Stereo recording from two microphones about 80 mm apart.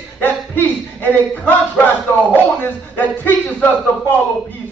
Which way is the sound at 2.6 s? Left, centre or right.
Left.